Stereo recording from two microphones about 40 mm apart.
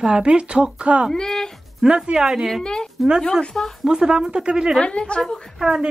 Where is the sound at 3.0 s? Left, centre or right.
Centre.